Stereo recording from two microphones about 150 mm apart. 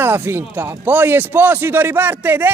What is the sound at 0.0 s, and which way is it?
A man's voice, 15° right (ahead or behind).